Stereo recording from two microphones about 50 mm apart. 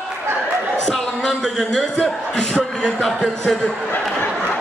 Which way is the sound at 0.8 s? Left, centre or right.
Centre.